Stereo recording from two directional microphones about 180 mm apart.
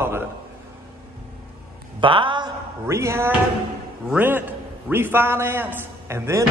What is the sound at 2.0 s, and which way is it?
Speech, 25° right (ahead or behind).